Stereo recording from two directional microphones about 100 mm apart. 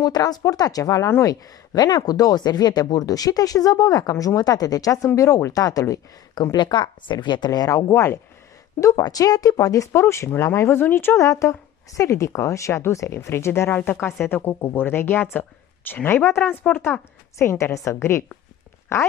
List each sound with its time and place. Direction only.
0.0 s speech: 40° left (ahead or behind)
7.9 s speech: 25° left (ahead or behind)
8.8 s speech: 35° left (ahead or behind)